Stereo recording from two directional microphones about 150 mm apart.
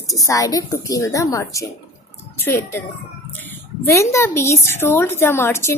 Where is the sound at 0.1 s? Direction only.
25° left (ahead or behind).